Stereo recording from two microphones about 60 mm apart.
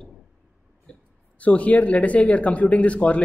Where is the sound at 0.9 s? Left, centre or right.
Centre.